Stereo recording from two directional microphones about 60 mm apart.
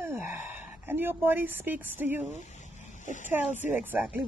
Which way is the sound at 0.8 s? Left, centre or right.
Right.